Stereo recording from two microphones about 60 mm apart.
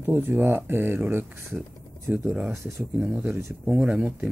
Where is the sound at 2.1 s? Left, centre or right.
Centre.